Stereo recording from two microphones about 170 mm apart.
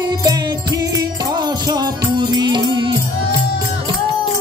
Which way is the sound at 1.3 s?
25° right (ahead or behind).